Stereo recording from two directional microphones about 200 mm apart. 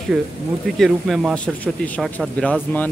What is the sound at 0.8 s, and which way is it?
Speech, centre (ahead or behind).